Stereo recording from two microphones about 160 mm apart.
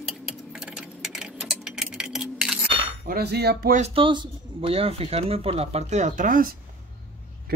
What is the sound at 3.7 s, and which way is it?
Speech, 40° right (ahead or behind).